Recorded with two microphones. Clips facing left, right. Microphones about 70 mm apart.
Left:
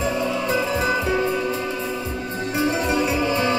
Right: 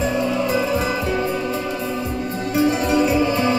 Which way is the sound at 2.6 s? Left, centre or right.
Left.